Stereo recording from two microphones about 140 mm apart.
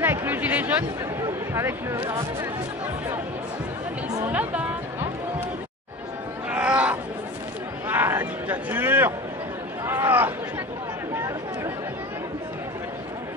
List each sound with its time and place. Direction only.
0.0 s speech: 15° right (ahead or behind)
4.2 s a woman's voice: 10° right (ahead or behind)
6.5 s a sound: 10° right (ahead or behind)
11.1 s chatter: 20° right (ahead or behind)